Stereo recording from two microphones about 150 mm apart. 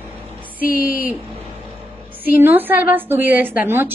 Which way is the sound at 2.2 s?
10° right (ahead or behind).